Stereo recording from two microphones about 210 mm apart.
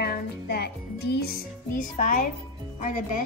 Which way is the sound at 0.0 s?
50° left (ahead or behind).